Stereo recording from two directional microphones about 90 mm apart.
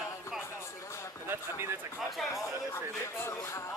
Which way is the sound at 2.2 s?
Centre (ahead or behind).